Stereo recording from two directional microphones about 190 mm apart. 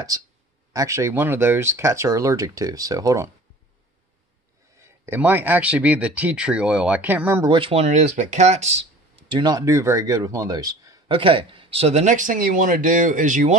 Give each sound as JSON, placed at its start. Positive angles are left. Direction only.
{"t": 0.7, "sound": "speech", "side_deg": -15}
{"t": 5.0, "sound": "speech", "side_deg": -10}
{"t": 7.4, "sound": "speech", "side_deg": -25}